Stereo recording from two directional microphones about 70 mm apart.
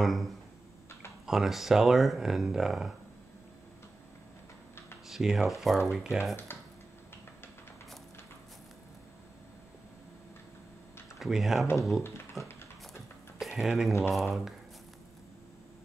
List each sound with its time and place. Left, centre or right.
0.0 s speech: centre
5.0 s speech: centre
6.3 s speech: left
11.1 s speech: centre
12.0 s speech: left
13.4 s speech: centre